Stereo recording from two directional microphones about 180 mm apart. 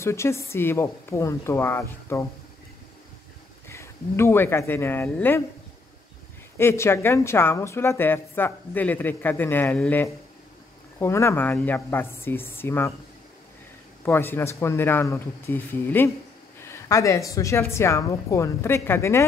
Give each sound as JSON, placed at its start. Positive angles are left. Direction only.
{"t": 0.0, "sound": "a woman's voice", "side_deg": 15}
{"t": 3.6, "sound": "speech", "side_deg": 15}
{"t": 6.6, "sound": "a woman's voice", "side_deg": 15}
{"t": 14.0, "sound": "a woman's voice", "side_deg": 10}